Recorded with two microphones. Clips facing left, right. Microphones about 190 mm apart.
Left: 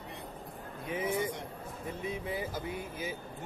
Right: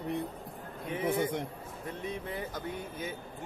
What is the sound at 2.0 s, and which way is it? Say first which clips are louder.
Speech: left 1 dB; 5° left (ahead or behind).